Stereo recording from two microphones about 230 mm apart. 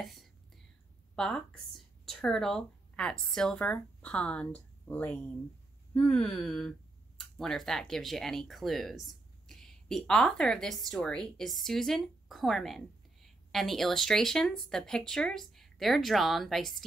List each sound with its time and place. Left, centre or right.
0.0 s whispering: centre
1.1 s speech: centre